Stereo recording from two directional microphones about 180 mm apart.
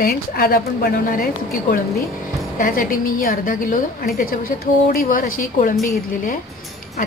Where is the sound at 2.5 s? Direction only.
50° left (ahead or behind).